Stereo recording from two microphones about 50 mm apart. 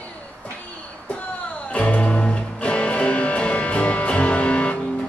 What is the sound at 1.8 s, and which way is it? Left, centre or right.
Music, left.